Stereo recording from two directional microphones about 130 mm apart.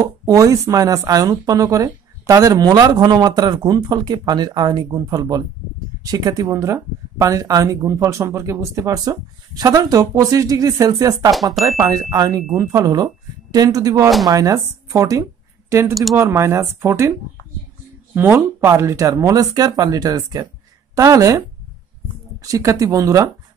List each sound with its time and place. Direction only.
0.0 s speech: 25° right (ahead or behind)
15.9 s speech: centre (ahead or behind)
16.2 s speech: 20° right (ahead or behind)
18.1 s speech: 15° right (ahead or behind)